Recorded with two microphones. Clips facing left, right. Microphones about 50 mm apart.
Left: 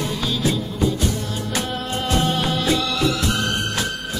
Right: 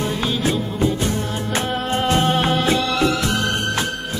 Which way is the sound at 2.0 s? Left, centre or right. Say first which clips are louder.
Right 3 dB; right.